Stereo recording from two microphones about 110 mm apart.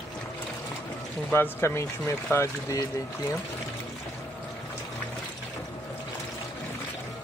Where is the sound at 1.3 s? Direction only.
20° left (ahead or behind).